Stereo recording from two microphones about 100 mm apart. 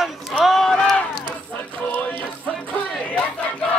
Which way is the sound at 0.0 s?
Centre (ahead or behind).